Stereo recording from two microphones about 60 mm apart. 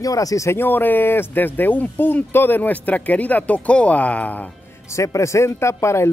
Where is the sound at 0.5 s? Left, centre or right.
Left.